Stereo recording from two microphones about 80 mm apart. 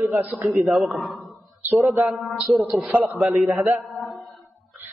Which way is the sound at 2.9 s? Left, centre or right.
Right.